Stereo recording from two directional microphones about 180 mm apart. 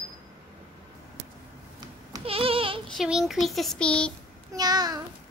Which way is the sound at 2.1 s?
30° right (ahead or behind).